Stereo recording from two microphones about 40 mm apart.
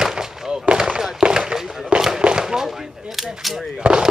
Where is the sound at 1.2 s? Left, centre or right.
Centre.